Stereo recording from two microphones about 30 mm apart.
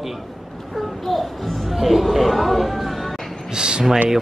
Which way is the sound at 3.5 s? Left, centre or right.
Right.